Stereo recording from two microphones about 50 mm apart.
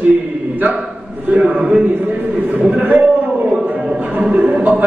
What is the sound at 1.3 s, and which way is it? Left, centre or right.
Speech, right.